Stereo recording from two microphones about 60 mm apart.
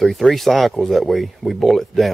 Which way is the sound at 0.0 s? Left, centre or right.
Centre.